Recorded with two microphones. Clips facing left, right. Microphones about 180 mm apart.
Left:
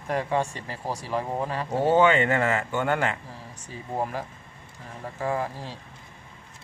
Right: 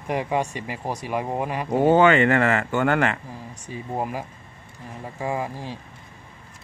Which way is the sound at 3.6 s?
10° right (ahead or behind).